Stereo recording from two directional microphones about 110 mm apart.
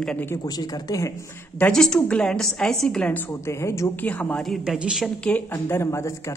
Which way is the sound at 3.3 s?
25° left (ahead or behind).